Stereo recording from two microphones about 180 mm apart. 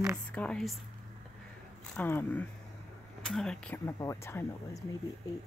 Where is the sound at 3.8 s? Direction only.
15° left (ahead or behind).